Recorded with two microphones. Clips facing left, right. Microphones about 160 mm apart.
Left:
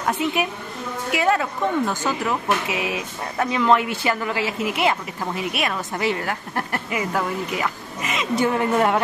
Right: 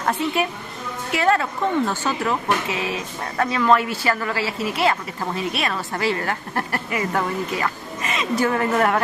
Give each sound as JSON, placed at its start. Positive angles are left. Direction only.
{"t": 0.2, "sound": "speech", "side_deg": 15}